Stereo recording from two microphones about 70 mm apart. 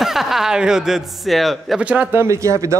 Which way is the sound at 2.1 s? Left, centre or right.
Right.